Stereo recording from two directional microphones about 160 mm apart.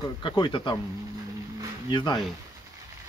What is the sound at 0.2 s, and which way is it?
Speech, 30° left (ahead or behind).